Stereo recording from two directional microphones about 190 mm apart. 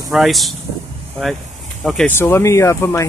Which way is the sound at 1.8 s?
Centre (ahead or behind).